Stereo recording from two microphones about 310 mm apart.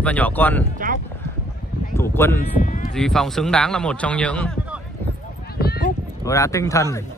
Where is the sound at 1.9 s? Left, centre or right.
Centre.